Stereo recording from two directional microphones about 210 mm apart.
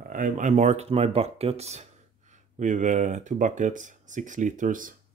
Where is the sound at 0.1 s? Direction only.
40° right (ahead or behind).